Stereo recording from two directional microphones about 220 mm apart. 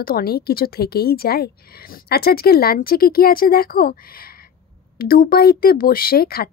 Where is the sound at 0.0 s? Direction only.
45° left (ahead or behind).